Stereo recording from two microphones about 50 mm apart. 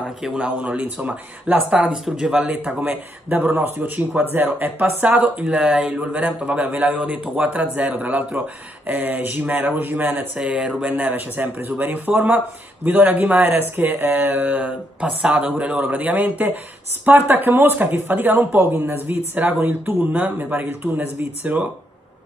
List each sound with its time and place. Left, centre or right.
0.4 s a man's voice: right
5.4 s a man's voice: right
10.4 s a man's voice: right
10.8 s speech: right
13.6 s speech: right
21.5 s speech: right